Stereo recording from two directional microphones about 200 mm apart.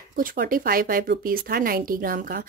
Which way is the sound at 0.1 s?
45° right (ahead or behind).